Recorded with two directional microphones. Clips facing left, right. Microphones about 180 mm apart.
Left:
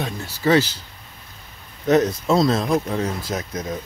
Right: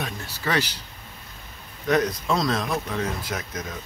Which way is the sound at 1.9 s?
25° left (ahead or behind).